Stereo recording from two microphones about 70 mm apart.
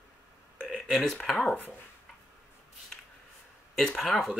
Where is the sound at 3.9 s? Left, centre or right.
Centre.